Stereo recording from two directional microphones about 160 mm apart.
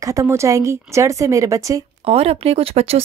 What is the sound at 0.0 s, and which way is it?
Speech, 20° right (ahead or behind).